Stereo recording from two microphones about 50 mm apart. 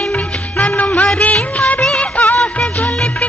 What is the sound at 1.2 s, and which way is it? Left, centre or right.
Music of bollywood, left.